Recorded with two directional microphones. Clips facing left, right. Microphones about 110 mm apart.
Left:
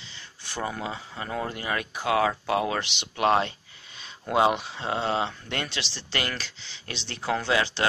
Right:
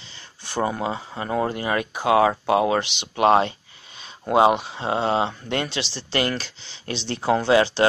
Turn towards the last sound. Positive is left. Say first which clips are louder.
# right 7 dB
turn(degrees=-30)  # may be behind; listen again after turning